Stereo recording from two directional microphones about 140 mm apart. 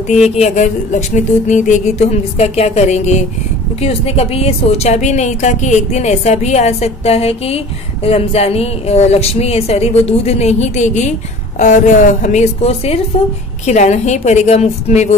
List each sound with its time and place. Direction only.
0.4 s a woman's voice: 60° left (ahead or behind)